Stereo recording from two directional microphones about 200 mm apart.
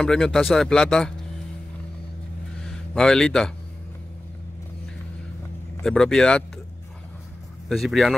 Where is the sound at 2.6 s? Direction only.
5° left (ahead or behind).